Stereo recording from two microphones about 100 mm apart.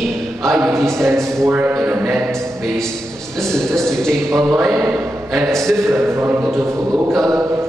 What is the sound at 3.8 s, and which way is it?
Speech, 5° left (ahead or behind).